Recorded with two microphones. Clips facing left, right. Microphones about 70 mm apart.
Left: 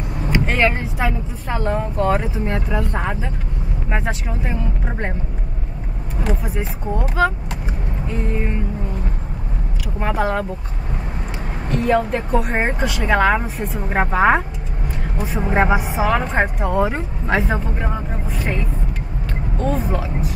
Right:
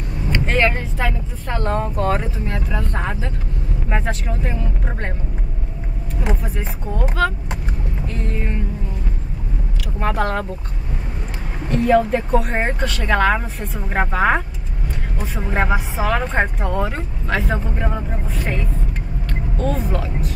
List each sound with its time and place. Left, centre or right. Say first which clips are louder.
0.3 s speech: even; centre
7.0 s speech: left 1 dB; centre
9.9 s speech: left 1 dB; centre
11.7 s speech: right 2 dB; centre
15.5 s speech: left 3 dB; centre
16.9 s speech: left 3 dB; centre
17.5 s speech: even; centre
19.6 s speech: left 1 dB; centre